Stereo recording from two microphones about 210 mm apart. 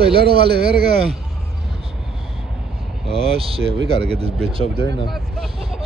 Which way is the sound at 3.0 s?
25° right (ahead or behind).